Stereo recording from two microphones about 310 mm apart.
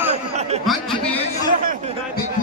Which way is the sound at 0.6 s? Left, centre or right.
Centre.